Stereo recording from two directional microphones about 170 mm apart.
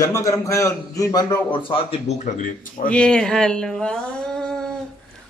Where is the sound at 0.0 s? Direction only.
20° left (ahead or behind); by 2.9 s 45° left (ahead or behind).